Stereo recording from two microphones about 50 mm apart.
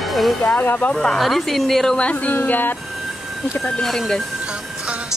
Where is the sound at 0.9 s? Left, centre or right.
Centre.